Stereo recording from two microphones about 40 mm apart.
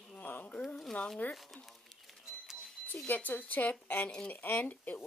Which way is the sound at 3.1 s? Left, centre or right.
Left.